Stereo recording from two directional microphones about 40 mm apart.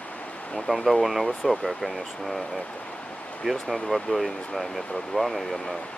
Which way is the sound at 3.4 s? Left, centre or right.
Centre.